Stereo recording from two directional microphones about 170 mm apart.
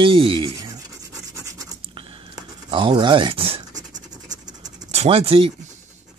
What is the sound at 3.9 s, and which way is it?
Scratch, 45° right (ahead or behind).